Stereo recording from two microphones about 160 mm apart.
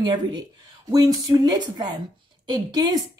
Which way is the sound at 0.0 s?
30° right (ahead or behind).